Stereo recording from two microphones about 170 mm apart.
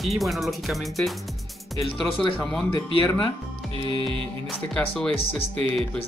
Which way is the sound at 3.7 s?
30° right (ahead or behind).